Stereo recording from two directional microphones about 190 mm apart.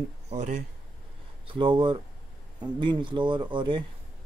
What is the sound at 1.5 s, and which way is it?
Speech, 25° right (ahead or behind).